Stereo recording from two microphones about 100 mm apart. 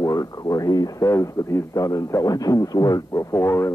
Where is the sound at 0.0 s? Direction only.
35° left (ahead or behind).